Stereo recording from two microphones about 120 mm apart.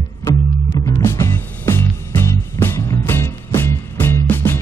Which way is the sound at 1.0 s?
25° left (ahead or behind).